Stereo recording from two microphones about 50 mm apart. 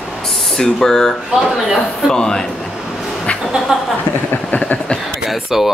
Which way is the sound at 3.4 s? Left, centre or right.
Centre.